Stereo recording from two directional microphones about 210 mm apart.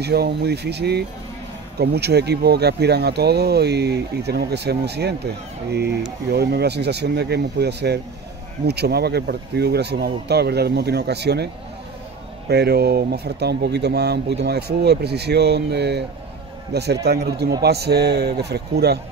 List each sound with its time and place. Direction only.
0.0 s speech: 50° right (ahead or behind)
12.4 s speech: 50° right (ahead or behind)